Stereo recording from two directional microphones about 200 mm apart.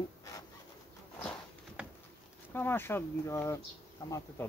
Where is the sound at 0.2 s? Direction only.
15° left (ahead or behind).